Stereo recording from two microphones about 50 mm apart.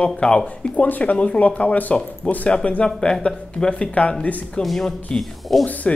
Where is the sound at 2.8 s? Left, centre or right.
Centre.